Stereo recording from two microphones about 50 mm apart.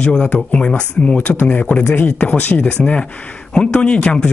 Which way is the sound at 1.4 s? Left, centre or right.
Left.